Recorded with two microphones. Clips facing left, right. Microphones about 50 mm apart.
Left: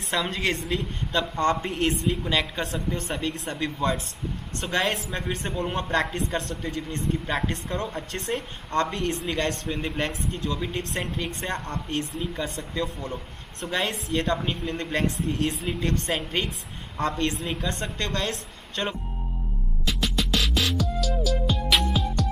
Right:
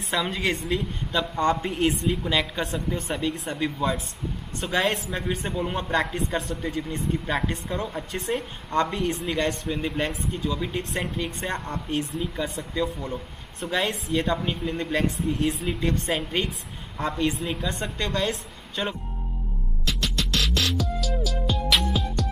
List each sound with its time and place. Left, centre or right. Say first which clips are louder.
0.0 s speech: even; centre
19.8 s music: left 1 dB; centre